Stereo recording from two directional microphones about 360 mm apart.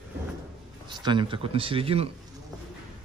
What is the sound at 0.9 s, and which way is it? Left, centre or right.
Speech, centre.